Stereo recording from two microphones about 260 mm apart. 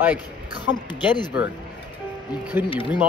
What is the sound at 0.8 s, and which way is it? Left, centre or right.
Speech, centre.